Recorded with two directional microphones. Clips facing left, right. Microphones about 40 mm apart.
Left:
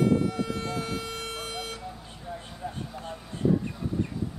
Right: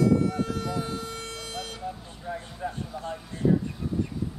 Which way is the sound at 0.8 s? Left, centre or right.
Left.